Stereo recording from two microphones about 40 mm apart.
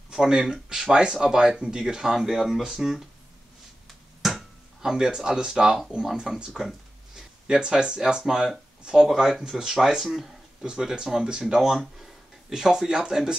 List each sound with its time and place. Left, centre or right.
0.3 s speech: centre
4.2 s a sound: centre
4.8 s speech: centre
9.5 s speech: centre
10.6 s speech: centre
11.7 s speech: centre
12.4 s speech: centre